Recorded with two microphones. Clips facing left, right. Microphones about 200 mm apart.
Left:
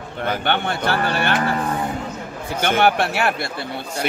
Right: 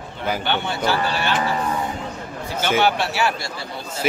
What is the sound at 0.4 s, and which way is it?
A man's voice, 55° left (ahead or behind).